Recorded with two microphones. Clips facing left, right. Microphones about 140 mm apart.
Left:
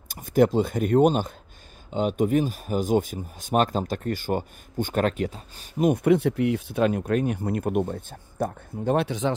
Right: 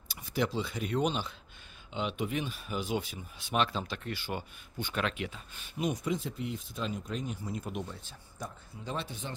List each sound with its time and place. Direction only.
0.1 s speech: 50° left (ahead or behind); by 9.3 s 80° left